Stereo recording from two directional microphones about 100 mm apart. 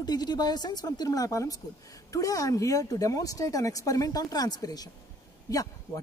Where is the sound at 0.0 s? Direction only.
45° left (ahead or behind).